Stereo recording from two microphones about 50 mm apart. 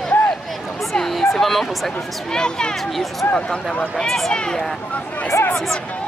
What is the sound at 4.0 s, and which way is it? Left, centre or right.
Speech, centre.